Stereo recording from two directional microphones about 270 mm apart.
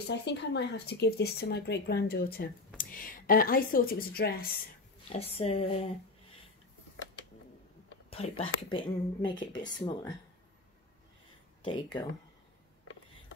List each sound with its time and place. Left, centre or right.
0.1 s speech: left
5.1 s a woman's voice: left
8.1 s speech: centre
11.6 s speech: centre